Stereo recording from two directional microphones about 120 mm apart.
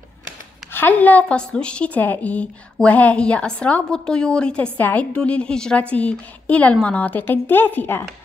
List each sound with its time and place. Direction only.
0.7 s a woman's voice: 15° left (ahead or behind)